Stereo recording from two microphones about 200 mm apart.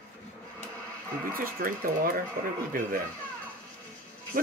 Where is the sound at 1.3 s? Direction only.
45° right (ahead or behind).